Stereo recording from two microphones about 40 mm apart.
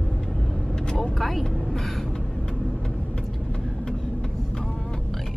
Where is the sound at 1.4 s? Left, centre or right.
Centre.